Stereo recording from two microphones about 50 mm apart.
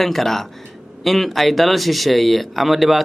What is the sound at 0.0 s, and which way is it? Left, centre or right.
Speech, centre.